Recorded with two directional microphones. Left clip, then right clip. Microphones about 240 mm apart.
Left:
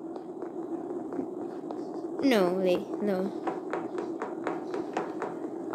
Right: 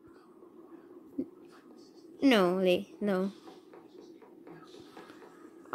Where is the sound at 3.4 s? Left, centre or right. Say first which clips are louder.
Left 19 dB; left.